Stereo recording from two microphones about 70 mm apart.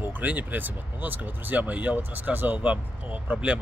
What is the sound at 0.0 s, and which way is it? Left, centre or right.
Speech, right.